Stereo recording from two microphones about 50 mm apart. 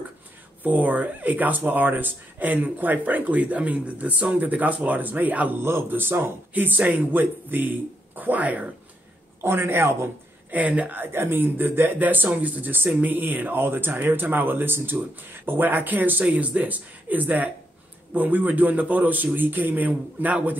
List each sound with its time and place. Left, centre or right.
0.7 s speech: right
5.6 s speech: right
5.9 s speech: right
6.5 s speech: right
9.4 s speech: right
10.5 s speech: right
11.1 s speech: right
12.0 s speech: right